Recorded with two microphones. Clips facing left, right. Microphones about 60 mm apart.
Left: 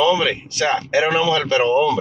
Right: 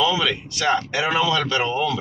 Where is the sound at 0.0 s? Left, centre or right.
Left.